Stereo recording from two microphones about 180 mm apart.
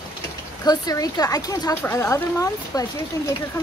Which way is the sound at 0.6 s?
20° left (ahead or behind).